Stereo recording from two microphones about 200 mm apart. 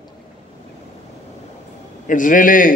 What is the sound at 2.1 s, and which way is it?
Speech, 40° left (ahead or behind).